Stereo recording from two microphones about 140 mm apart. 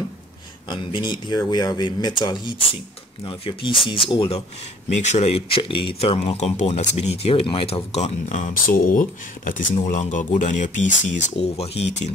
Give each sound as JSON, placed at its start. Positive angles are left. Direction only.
{"t": 0.7, "sound": "speech", "side_deg": 35}
{"t": 4.9, "sound": "speech", "side_deg": 55}